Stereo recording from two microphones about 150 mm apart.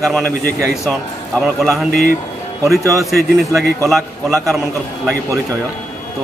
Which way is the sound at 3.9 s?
Centre (ahead or behind).